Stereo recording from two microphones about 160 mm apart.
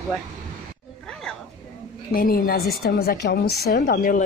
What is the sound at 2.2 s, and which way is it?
A woman's voice, 65° left (ahead or behind).